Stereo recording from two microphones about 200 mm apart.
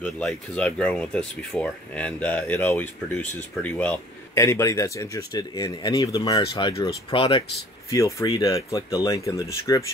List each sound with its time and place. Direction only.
0.0 s speech: 5° left (ahead or behind)